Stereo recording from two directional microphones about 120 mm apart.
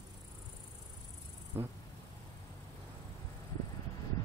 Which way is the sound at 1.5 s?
20° right (ahead or behind).